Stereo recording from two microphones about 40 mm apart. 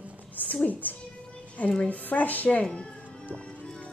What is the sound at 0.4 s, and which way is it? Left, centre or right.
A woman's voice, left.